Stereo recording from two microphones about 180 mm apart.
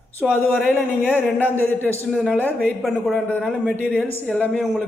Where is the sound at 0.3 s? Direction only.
10° left (ahead or behind).